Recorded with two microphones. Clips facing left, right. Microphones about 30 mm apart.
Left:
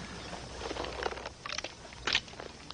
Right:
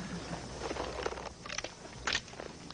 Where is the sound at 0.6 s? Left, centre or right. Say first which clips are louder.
Left 1 dB; left.